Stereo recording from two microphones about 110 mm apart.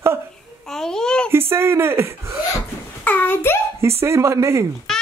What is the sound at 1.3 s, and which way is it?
Speech, 20° right (ahead or behind).